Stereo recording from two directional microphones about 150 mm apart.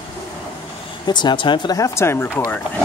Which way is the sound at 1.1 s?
30° left (ahead or behind).